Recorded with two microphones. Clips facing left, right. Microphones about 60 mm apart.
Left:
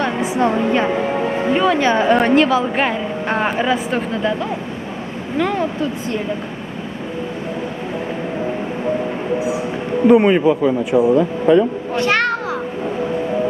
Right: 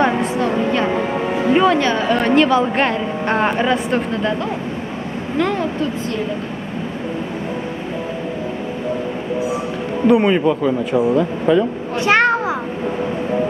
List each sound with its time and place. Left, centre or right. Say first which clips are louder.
0.4 s a woman's voice: left 5 dB; left
1.5 s a woman's voice: right 3 dB; centre
1.8 s a woman's voice: left 3 dB; left
2.1 s a woman's voice: even; centre
10.0 s speech: left 2 dB; centre
11.9 s children playing: right 5 dB; centre